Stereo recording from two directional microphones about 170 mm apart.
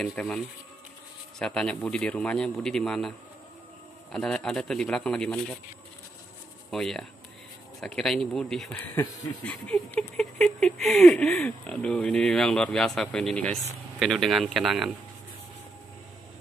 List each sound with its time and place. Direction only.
0.0 s speech: 5° left (ahead or behind)
1.4 s speech: 5° left (ahead or behind)
6.7 s speech: centre (ahead or behind)